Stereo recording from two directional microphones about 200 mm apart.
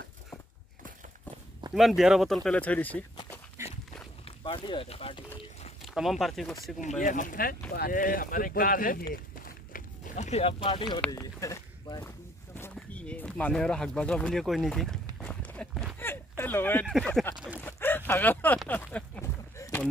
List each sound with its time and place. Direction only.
1.7 s speech: centre (ahead or behind)
3.6 s dog: 10° right (ahead or behind)
4.2 s speech: 25° left (ahead or behind)
5.9 s speech: centre (ahead or behind)
6.8 s speech: 40° left (ahead or behind)
9.1 s a sound: 45° left (ahead or behind); by 11.0 s 25° left (ahead or behind)
11.1 s speech: 15° left (ahead or behind)
15.1 s clip-clop: 5° left (ahead or behind)
16.1 s a sound: 10° left (ahead or behind)
16.8 s speech: centre (ahead or behind)
17.6 s a sound: 10° left (ahead or behind)